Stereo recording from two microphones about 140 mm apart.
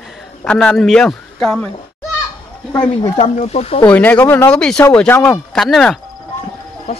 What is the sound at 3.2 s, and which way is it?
Speech, 50° left (ahead or behind).